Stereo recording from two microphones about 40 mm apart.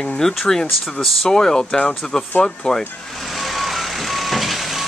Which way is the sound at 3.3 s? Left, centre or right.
Centre.